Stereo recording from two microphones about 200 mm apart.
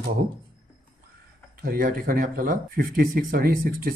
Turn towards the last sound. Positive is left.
turn(degrees=-45)  # may be behind; listen again after turning